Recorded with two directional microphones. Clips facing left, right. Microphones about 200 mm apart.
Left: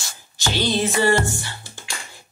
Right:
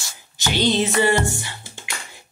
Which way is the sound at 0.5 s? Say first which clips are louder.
Right 2 dB; 20° right (ahead or behind).